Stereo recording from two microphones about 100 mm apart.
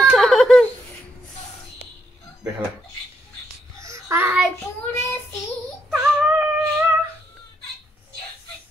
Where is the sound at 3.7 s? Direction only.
30° right (ahead or behind).